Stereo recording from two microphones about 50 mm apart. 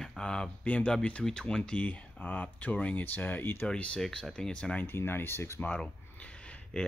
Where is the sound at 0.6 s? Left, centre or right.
Left.